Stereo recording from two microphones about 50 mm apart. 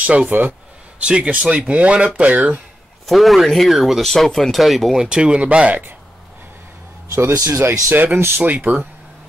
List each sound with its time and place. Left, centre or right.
0.3 s speech: right
0.9 s speech: right
3.1 s speech: centre
5.1 s speech: centre
7.2 s speech: right
7.9 s speech: right